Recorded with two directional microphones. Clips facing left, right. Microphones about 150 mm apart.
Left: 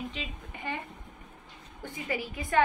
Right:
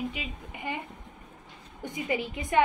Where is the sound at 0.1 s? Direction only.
10° right (ahead or behind).